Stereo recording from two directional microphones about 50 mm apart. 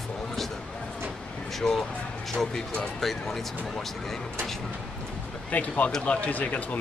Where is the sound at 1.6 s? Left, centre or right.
Centre.